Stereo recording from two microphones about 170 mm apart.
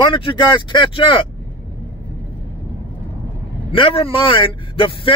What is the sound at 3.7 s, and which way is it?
Speech, 30° left (ahead or behind).